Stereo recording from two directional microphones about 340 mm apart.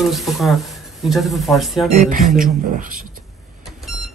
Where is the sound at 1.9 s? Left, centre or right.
Right.